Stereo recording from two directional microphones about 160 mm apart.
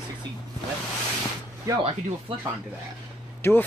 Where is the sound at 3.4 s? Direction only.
15° left (ahead or behind).